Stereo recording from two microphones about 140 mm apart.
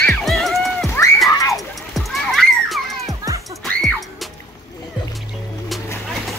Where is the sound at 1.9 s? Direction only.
Centre (ahead or behind).